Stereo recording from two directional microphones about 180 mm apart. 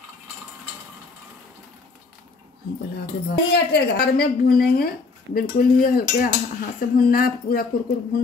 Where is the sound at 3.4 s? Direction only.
65° left (ahead or behind).